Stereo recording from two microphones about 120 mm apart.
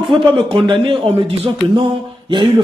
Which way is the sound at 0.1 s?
45° right (ahead or behind).